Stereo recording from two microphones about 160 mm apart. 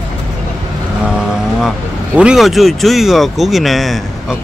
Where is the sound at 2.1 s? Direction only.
5° right (ahead or behind).